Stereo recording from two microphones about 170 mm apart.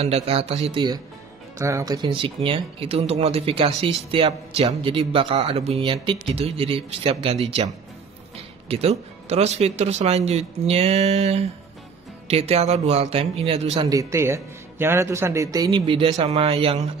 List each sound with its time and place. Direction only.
0.0 s speech: 35° right (ahead or behind)
13.8 s a man's voice: 20° right (ahead or behind); by 16.9 s 35° right (ahead or behind)